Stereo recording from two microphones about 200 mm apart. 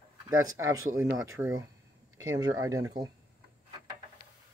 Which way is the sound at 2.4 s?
20° right (ahead or behind).